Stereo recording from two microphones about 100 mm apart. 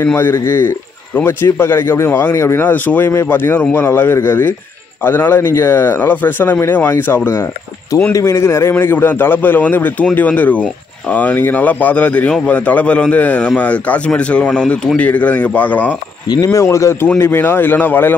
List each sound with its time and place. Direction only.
0.0 s a man's voice: 20° left (ahead or behind)
16.5 s a man's voice: 30° left (ahead or behind)